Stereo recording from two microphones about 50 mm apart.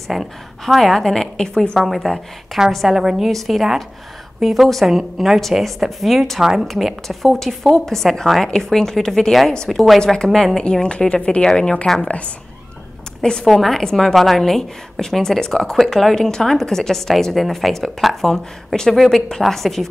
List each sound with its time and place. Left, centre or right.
0.1 s a woman's voice: centre
1.8 s a woman's voice: centre
13.2 s a woman's voice: centre
13.5 s a woman's voice: centre